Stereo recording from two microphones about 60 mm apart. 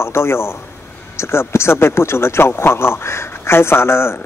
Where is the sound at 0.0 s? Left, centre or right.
Left.